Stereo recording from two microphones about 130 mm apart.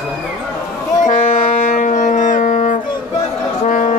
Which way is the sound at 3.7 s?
80° left.